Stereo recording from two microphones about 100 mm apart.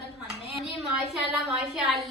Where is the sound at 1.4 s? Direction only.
Centre (ahead or behind).